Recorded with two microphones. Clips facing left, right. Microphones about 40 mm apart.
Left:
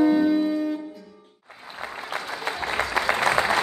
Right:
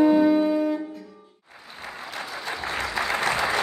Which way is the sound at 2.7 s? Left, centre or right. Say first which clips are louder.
Left 4 dB; left.